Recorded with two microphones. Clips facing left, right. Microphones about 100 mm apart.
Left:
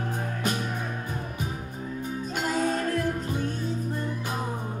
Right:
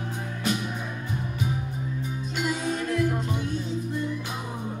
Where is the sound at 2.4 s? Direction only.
50° left (ahead or behind).